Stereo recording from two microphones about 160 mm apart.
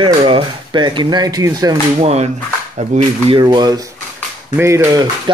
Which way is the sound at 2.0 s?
40° right (ahead or behind).